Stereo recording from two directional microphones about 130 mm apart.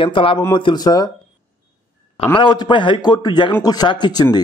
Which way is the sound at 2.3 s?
35° left (ahead or behind).